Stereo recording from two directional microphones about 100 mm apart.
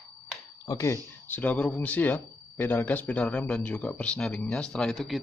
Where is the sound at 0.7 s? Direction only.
30° left (ahead or behind).